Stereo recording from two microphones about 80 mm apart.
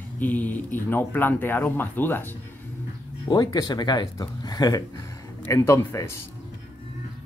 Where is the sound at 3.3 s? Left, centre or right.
Left.